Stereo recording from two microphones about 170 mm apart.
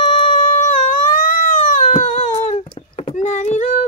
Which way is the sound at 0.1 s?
30° left (ahead or behind).